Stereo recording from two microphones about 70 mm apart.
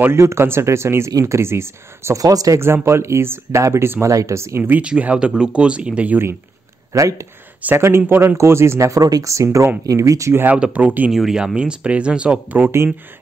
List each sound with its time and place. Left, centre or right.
0.0 s speech: right
2.1 s speech: right
2.6 s speech: right
4.6 s speech: right
6.9 s speech: right
7.6 s speech: right
10.5 s speech: centre
11.1 s speech: centre; by 12.7 s right